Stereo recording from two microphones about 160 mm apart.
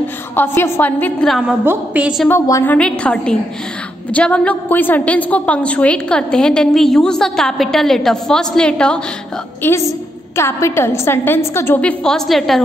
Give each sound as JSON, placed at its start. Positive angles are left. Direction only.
{"t": 0.4, "sound": "a woman's voice", "side_deg": 10}
{"t": 1.6, "sound": "a woman's voice", "side_deg": -10}
{"t": 2.2, "sound": "a woman's voice", "side_deg": 15}
{"t": 9.6, "sound": "a woman's voice", "side_deg": 15}
{"t": 12.0, "sound": "a woman's voice", "side_deg": 0}